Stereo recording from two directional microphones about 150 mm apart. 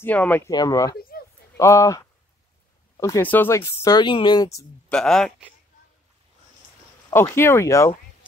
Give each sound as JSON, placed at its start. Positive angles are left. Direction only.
{"t": 0.0, "sound": "speech", "side_deg": 10}
{"t": 0.5, "sound": "speech", "side_deg": 25}
{"t": 0.9, "sound": "a sound", "side_deg": 90}
{"t": 1.6, "sound": "speech", "side_deg": 20}
{"t": 4.8, "sound": "speech", "side_deg": 5}
{"t": 7.1, "sound": "speech", "side_deg": 15}